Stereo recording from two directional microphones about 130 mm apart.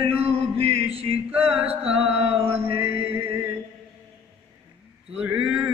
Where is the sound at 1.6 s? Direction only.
50° right (ahead or behind).